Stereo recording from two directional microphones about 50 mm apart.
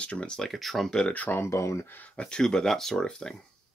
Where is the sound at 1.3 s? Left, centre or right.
Left.